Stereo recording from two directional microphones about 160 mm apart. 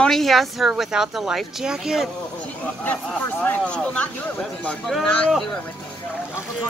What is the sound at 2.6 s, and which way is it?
Speech, 10° left (ahead or behind).